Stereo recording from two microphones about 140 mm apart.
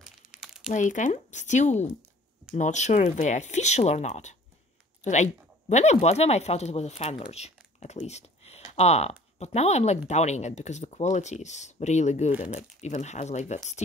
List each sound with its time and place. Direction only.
0.0 s crumpling: 5° right (ahead or behind)
0.7 s speech: 60° left (ahead or behind)
7.8 s a sound: 50° left (ahead or behind)
8.7 s speech: 50° left (ahead or behind)